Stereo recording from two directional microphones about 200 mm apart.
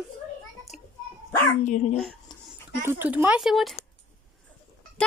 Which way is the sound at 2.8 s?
10° right (ahead or behind).